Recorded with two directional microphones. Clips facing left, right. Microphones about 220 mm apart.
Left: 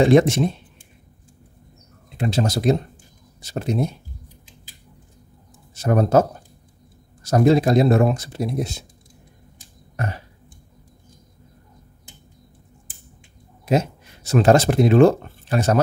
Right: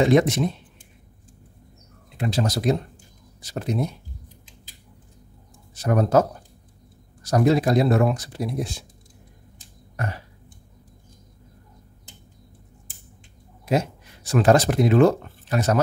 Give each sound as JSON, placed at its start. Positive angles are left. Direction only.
{"t": 0.0, "sound": "speech", "side_deg": 30}
{"t": 2.1, "sound": "speech", "side_deg": 25}
{"t": 5.8, "sound": "speech", "side_deg": 25}
{"t": 7.2, "sound": "speech", "side_deg": 25}
{"t": 9.9, "sound": "burping", "side_deg": 20}
{"t": 13.7, "sound": "speech", "side_deg": 25}